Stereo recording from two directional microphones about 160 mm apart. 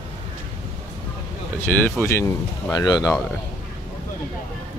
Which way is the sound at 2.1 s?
25° left (ahead or behind).